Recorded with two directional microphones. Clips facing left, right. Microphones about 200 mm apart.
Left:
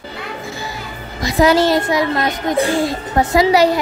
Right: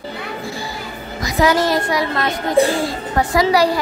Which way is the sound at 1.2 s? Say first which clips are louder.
Left 3 dB; 30° left (ahead or behind).